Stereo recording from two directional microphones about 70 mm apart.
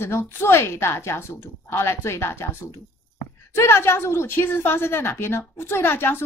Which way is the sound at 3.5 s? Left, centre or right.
Left.